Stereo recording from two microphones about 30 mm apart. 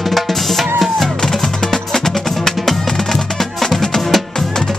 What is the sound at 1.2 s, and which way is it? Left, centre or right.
Music, centre.